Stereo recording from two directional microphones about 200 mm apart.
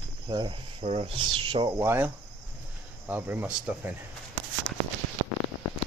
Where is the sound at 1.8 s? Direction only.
10° right (ahead or behind).